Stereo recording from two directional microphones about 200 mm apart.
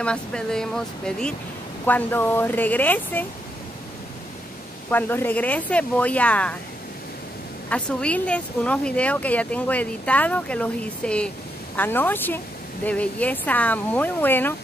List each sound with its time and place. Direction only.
0.0 s speech: 5° left (ahead or behind)
4.9 s speech: 10° left (ahead or behind)
7.7 s speech: 5° left (ahead or behind)